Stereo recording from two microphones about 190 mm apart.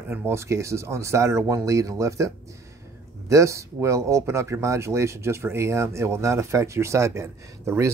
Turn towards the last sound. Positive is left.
turn(degrees=-15)  # may be behind; listen again after turning